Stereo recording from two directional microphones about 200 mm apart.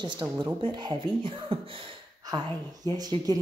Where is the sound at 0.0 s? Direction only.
20° right (ahead or behind).